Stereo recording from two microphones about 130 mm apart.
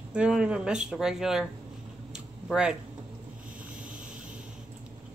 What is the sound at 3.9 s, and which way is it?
Vehicle, 90° right.